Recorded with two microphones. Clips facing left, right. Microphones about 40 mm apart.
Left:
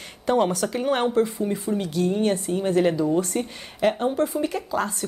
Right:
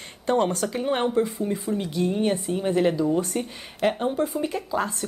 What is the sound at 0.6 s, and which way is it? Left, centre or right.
Speech, centre.